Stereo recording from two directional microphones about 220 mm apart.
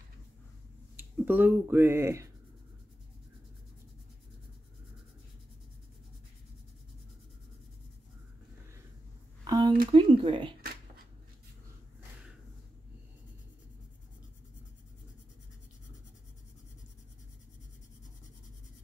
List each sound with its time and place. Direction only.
0.9 s speech: 10° right (ahead or behind)
9.4 s a sound: 20° right (ahead or behind)
9.8 s speech: 25° right (ahead or behind)